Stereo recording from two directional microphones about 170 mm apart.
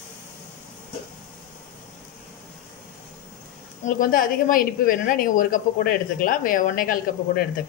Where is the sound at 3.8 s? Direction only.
55° left (ahead or behind).